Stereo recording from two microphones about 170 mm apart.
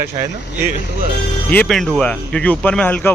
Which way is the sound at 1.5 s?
5° left (ahead or behind).